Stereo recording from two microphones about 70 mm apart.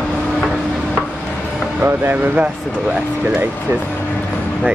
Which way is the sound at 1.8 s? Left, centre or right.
Right.